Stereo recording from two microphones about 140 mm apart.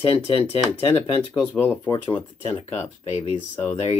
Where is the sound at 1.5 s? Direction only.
10° left (ahead or behind).